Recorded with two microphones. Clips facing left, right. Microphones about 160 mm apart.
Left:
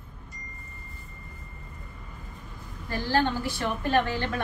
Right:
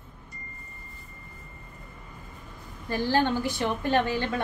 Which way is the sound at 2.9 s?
20° right (ahead or behind).